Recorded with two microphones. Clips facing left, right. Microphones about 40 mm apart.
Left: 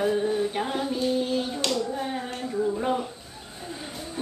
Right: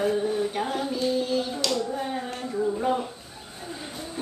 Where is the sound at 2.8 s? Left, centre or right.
Centre.